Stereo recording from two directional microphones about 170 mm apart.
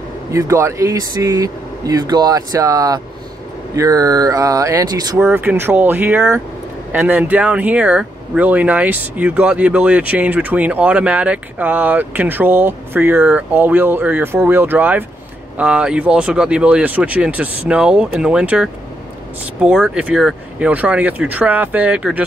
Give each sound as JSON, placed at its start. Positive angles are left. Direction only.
{"t": 0.3, "sound": "speech", "side_deg": -20}
{"t": 5.2, "sound": "speech", "side_deg": -10}